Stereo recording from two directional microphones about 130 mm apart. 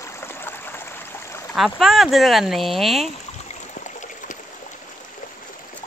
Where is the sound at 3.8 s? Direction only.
75° left (ahead or behind).